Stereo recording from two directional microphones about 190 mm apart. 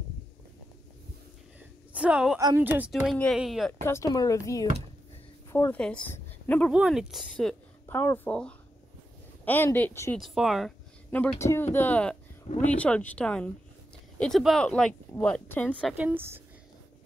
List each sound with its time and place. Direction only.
2.0 s a woman's voice: 5° right (ahead or behind)
3.8 s speech: 15° left (ahead or behind)
6.7 s a woman's voice: 5° right (ahead or behind); by 10.1 s 10° left (ahead or behind)
10.1 s a woman's voice: centre (ahead or behind)
11.1 s a woman's voice: 10° left (ahead or behind)
15.8 s a woman's voice: 10° right (ahead or behind)